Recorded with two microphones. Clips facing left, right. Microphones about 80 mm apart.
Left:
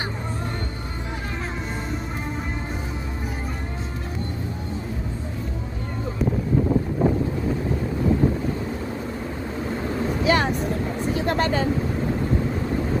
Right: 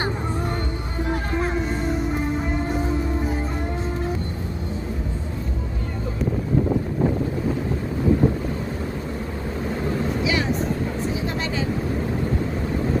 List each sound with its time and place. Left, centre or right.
10.2 s vehicle: left